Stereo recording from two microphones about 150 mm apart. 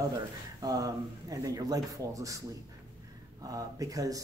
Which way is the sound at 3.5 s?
25° right (ahead or behind).